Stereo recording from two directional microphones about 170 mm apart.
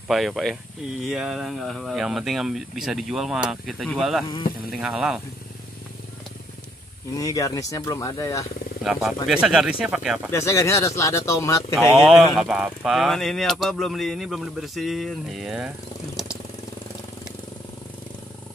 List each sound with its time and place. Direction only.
0.1 s speech: centre (ahead or behind)
7.2 s speech: 20° left (ahead or behind)
8.8 s speech: centre (ahead or behind)
10.3 s speech: 15° left (ahead or behind)
11.9 s speech: centre (ahead or behind)